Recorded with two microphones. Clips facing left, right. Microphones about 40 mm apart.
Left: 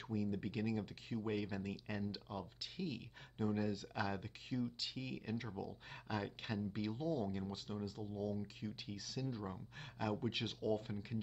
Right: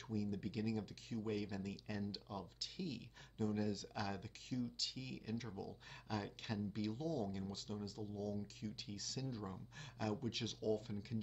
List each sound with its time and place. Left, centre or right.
0.1 s speech: left